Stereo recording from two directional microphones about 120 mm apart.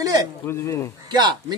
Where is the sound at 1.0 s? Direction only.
35° right (ahead or behind).